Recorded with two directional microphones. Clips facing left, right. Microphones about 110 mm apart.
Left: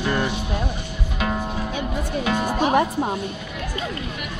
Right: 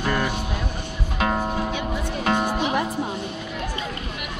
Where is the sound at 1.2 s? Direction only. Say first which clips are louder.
Right 2 dB; 30° right (ahead or behind).